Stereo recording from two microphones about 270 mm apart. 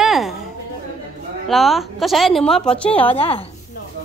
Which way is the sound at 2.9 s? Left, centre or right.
Left.